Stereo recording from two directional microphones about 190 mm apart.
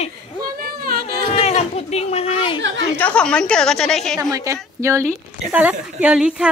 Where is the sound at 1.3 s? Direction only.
35° left (ahead or behind).